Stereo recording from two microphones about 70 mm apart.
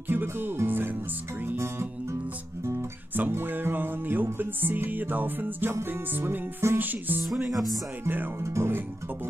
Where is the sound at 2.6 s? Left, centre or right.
Right.